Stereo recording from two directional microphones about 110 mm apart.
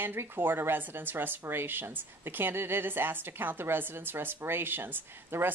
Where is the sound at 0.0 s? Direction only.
20° right (ahead or behind).